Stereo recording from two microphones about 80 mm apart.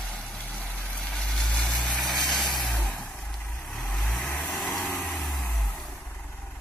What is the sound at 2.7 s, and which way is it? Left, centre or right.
Vehicle, centre.